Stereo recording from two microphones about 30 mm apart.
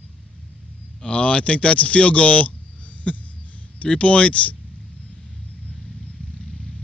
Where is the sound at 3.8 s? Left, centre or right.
Left.